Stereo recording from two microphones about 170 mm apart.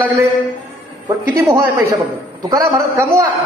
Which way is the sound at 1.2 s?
15° right (ahead or behind).